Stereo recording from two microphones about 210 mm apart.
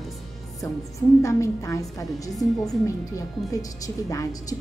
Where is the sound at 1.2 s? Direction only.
15° left (ahead or behind).